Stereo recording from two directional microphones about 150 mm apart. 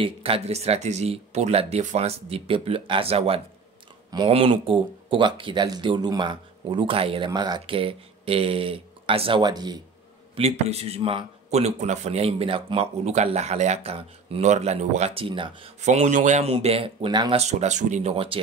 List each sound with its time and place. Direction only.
0.0 s speech: 40° right (ahead or behind)
10.3 s speech: 45° right (ahead or behind)
15.8 s speech: 50° right (ahead or behind)
16.5 s speech: 40° right (ahead or behind)
17.4 s speech: 50° right (ahead or behind)